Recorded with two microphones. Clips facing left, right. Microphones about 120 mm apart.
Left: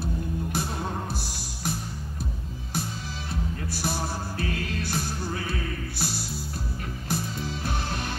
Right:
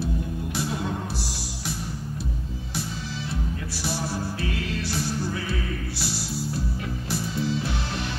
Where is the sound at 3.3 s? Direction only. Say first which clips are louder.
Right 1 dB; 50° left (ahead or behind).